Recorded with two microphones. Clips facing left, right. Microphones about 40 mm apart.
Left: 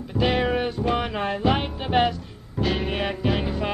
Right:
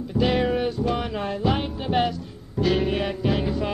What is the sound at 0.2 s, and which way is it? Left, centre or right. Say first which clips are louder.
Music: even; centre.